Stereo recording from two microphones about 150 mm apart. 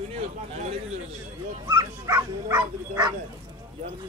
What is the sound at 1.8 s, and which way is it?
Bow-wow, 25° right (ahead or behind).